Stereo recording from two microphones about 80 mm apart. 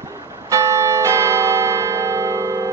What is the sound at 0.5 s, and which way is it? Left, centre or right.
Change ringing, right.